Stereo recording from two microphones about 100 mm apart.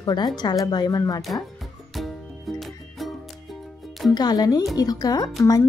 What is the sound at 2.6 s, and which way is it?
Music, centre (ahead or behind).